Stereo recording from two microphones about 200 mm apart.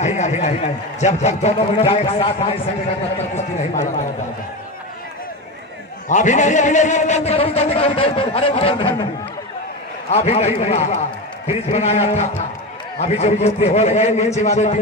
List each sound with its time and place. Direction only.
0.0 s a man's voice: 35° left (ahead or behind)
6.0 s a man's voice: 35° left (ahead or behind)